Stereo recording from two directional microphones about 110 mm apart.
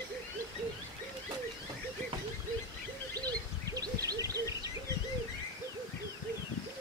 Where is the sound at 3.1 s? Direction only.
35° right (ahead or behind).